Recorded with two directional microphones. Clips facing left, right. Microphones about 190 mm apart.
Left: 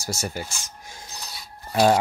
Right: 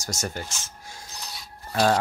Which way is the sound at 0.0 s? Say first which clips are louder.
Left 2 dB; 10° left (ahead or behind).